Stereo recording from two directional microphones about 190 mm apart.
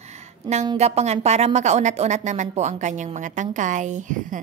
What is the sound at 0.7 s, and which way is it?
Speech, 35° right (ahead or behind).